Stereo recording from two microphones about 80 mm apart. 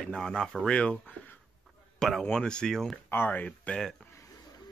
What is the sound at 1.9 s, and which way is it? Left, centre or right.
Speech, centre.